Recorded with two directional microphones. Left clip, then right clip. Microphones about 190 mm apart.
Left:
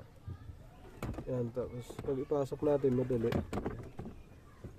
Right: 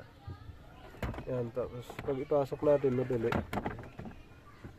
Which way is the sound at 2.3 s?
40° left (ahead or behind).